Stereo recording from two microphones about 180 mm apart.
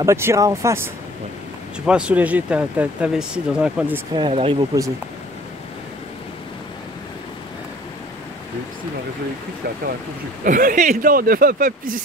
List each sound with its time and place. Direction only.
0.0 s speech: 15° right (ahead or behind)
1.9 s speech: 5° right (ahead or behind)
4.1 s speech: 30° right (ahead or behind)
10.4 s speech: 50° right (ahead or behind)